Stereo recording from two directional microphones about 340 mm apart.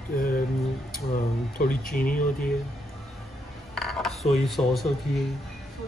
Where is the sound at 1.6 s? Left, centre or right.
Left.